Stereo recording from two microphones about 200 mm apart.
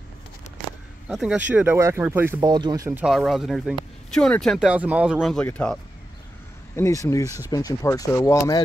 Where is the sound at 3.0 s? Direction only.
Centre (ahead or behind).